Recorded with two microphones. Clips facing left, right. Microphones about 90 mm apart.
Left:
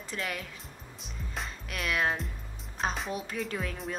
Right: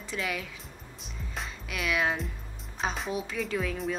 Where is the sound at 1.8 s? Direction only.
5° right (ahead or behind).